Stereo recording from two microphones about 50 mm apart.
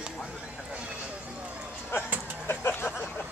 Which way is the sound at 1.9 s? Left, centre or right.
Left.